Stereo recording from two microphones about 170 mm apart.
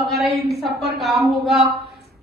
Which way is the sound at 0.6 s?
Centre (ahead or behind).